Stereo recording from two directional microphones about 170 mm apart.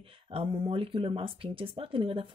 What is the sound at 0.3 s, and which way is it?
A woman's voice, 30° right (ahead or behind).